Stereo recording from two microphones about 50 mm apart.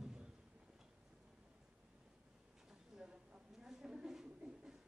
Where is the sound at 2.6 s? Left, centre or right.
Centre.